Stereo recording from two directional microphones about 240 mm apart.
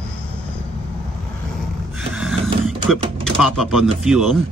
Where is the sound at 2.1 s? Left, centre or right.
Centre.